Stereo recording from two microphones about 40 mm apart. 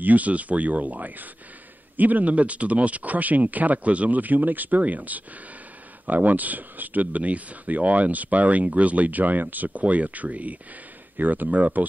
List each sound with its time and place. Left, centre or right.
0.0 s speech: right